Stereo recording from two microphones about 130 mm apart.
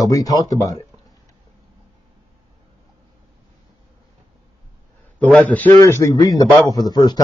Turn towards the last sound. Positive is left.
turn(degrees=30)  # may be behind; listen again after turning